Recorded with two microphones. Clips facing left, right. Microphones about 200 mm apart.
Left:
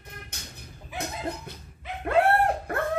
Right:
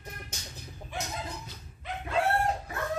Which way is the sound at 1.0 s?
60° left (ahead or behind).